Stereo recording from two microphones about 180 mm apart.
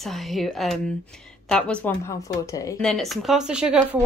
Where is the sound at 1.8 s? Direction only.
15° left (ahead or behind).